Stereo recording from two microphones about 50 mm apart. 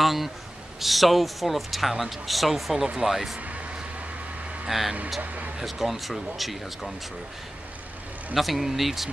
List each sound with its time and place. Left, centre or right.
0.0 s a man's voice: centre
3.3 s a sound: right
4.6 s speech: centre
5.2 s speech: right
5.6 s speech: centre
8.4 s speech: centre